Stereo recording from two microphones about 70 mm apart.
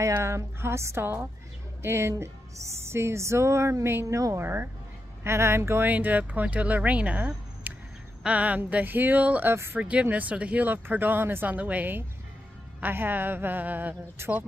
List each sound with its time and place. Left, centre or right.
0.0 s speech: right
5.9 s speech: right
9.5 s speech: right
9.8 s speech: centre
14.2 s speech: right